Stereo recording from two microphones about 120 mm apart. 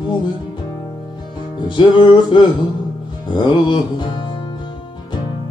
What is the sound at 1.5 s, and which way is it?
Music, 40° left (ahead or behind).